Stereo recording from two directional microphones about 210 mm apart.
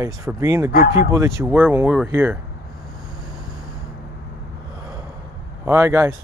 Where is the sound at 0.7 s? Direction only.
45° left (ahead or behind).